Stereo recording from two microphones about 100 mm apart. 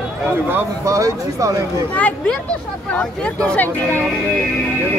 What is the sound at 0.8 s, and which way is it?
Speech, 30° right (ahead or behind).